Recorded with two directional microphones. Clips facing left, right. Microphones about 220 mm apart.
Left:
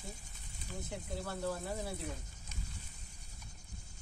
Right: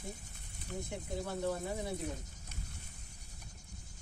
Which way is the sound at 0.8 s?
10° right (ahead or behind).